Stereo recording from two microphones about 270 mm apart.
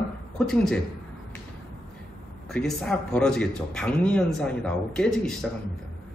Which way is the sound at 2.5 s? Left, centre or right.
Centre.